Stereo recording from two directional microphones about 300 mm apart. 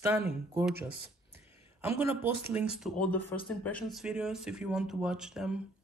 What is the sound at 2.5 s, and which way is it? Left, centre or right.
Speech, centre.